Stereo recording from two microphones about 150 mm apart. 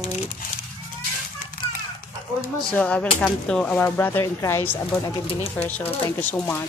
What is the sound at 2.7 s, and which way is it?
Speech, 10° left (ahead or behind).